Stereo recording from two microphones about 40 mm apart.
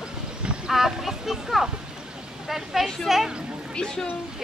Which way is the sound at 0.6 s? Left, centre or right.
Centre.